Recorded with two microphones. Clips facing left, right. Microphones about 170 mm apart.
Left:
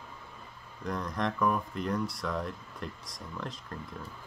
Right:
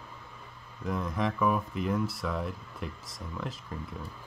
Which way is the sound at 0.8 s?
5° right (ahead or behind).